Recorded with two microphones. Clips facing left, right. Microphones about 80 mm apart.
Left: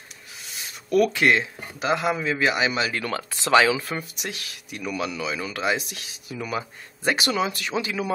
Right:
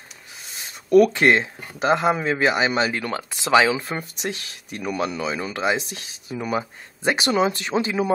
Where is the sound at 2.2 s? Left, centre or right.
Right.